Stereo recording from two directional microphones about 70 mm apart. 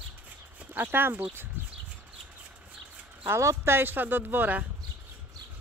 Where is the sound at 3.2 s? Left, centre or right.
Right.